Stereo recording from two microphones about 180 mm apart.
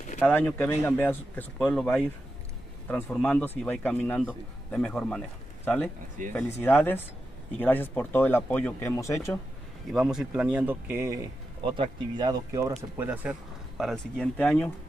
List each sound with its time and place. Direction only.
0.2 s speech: 10° left (ahead or behind)
3.1 s speech: 5° left (ahead or behind)
6.3 s speech: 10° left (ahead or behind)
9.9 s speech: 5° right (ahead or behind); by 12.7 s 20° right (ahead or behind)
12.9 s speech: 10° right (ahead or behind); by 14.7 s 5° left (ahead or behind)